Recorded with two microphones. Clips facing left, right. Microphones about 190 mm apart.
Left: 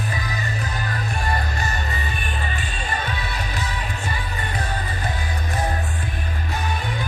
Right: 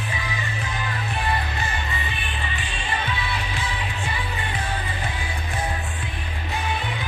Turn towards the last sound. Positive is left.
turn(degrees=40)  # may be behind; listen again after turning